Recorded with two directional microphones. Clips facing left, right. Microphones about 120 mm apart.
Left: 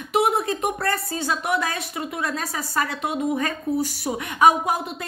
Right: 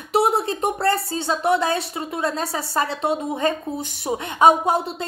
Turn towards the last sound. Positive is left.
turn(degrees=-30)  # may be behind; listen again after turning